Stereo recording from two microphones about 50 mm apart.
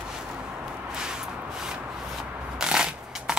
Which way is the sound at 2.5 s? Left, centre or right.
Centre.